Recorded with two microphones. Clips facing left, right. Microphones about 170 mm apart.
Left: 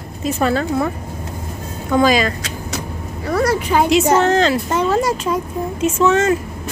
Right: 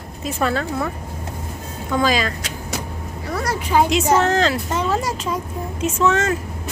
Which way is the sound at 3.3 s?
70° left (ahead or behind).